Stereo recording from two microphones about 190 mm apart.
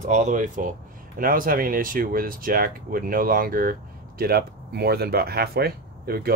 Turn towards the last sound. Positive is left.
turn(degrees=-55)  # may be behind; listen again after turning